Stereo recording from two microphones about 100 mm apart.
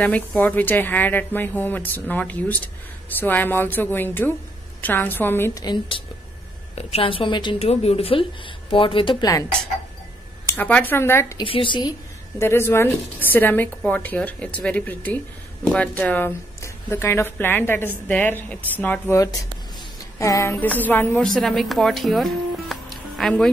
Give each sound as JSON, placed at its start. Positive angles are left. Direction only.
{"t": 0.0, "sound": "speech", "side_deg": 15}
{"t": 5.5, "sound": "speech", "side_deg": 40}
{"t": 6.7, "sound": "a woman's voice", "side_deg": 90}
{"t": 7.5, "sound": "a woman's voice", "side_deg": 90}
{"t": 10.6, "sound": "speech", "side_deg": 15}
{"t": 11.4, "sound": "a woman's voice", "side_deg": 60}
{"t": 12.4, "sound": "a woman's voice", "side_deg": 25}
{"t": 20.2, "sound": "speech", "side_deg": 30}
{"t": 20.6, "sound": "a woman's voice", "side_deg": 15}
{"t": 21.2, "sound": "speech", "side_deg": 5}